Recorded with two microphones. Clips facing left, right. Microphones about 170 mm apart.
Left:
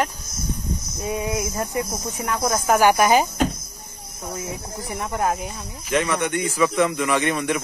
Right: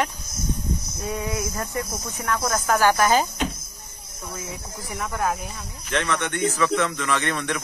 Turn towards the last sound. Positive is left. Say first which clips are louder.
# left 4 dB
turn(degrees=10)  # may be behind; listen again after turning